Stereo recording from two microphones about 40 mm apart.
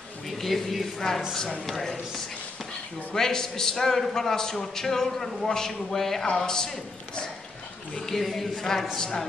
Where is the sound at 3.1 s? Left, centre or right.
Centre.